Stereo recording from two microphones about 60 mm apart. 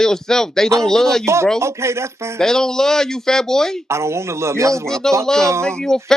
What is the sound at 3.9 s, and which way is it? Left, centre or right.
Speech, right.